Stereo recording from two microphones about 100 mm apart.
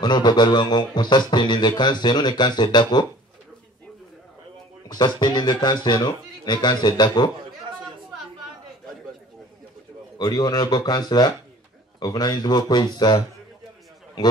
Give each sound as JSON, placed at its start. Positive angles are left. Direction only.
{"t": 0.0, "sound": "speech", "side_deg": 50}
{"t": 4.8, "sound": "speech", "side_deg": 45}
{"t": 10.1, "sound": "speech", "side_deg": 45}